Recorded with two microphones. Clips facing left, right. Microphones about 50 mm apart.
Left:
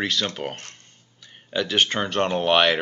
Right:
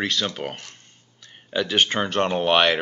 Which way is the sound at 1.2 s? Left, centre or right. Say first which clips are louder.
Right 1 dB; centre.